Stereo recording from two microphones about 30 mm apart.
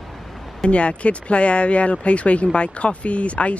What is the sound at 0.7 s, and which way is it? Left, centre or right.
Speech, left.